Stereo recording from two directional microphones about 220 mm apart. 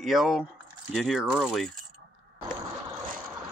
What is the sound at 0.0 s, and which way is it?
Speech, centre (ahead or behind).